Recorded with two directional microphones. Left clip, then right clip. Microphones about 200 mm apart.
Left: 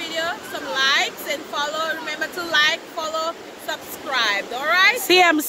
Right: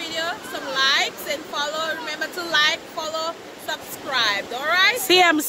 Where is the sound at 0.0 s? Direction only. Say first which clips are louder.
Left 1 dB; centre (ahead or behind).